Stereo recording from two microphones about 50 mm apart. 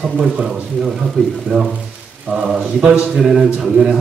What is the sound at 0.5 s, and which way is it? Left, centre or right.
A man's voice, centre.